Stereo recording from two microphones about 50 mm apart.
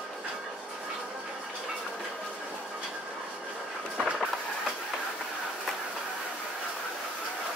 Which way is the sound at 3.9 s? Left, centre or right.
Centre.